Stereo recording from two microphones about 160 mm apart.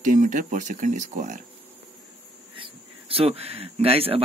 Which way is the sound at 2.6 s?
35° right (ahead or behind).